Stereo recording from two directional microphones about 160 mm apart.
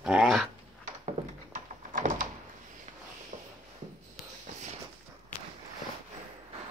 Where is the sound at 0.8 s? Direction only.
55° right (ahead or behind).